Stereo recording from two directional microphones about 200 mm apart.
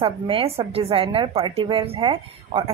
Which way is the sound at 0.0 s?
25° right (ahead or behind).